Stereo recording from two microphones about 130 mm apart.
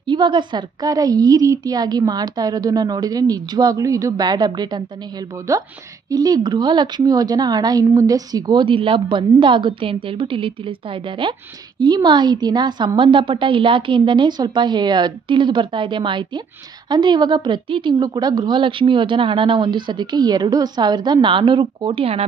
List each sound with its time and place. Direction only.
0.0 s a woman's voice: 35° right (ahead or behind)
5.5 s a woman's voice: 25° right (ahead or behind); by 22.2 s 45° right (ahead or behind)